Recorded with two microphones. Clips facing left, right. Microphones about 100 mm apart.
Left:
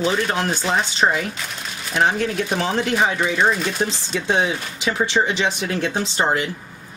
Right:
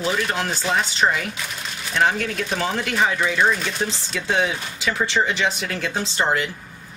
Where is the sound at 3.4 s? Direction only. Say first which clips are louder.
Left 1 dB; 5° left (ahead or behind).